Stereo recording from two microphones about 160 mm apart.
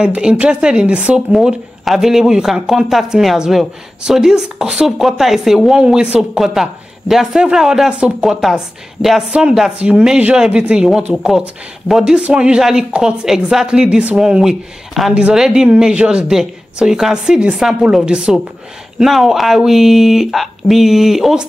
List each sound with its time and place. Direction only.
0.0 s speech: 5° right (ahead or behind)